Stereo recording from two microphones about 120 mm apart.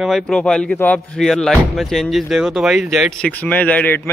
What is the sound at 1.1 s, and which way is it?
Speech, 5° left (ahead or behind).